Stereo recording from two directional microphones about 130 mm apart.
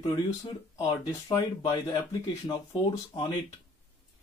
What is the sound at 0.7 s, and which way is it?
Speech, 25° left (ahead or behind).